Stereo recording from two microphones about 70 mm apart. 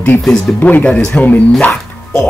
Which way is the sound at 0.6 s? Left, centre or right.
Left.